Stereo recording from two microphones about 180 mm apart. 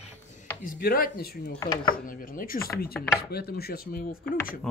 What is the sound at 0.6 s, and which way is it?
Chopping, 55° left (ahead or behind).